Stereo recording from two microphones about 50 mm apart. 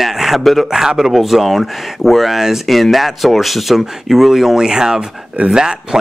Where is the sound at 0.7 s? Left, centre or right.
Centre.